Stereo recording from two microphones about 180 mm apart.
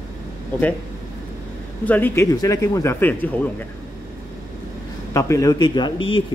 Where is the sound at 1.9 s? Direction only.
10° left (ahead or behind).